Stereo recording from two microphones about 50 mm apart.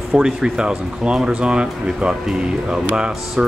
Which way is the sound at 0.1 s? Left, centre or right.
Centre.